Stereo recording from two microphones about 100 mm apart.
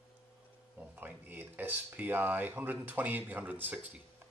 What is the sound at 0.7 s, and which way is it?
Speech, 20° right (ahead or behind).